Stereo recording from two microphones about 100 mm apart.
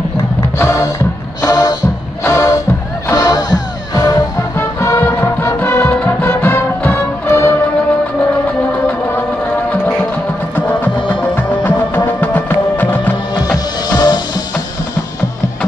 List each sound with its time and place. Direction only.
0.6 s music: 30° left (ahead or behind)
4.6 s music: 25° left (ahead or behind)
10.5 s music: 20° left (ahead or behind)
13.8 s music: 45° left (ahead or behind)